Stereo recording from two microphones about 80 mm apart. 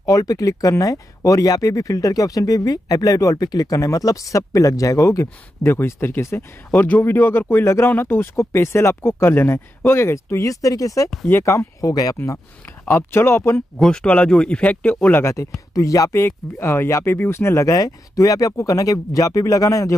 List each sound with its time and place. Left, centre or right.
0.0 s speech: left
11.2 s speech: left
11.5 s speech: left
12.8 s speech: left
13.7 s speech: centre
15.7 s speech: left
16.2 s speech: left
17.7 s speech: left